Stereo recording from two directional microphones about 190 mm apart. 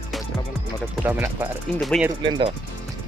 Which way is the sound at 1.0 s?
10° right (ahead or behind).